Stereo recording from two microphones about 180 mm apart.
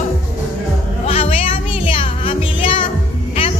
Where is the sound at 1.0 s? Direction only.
35° left (ahead or behind).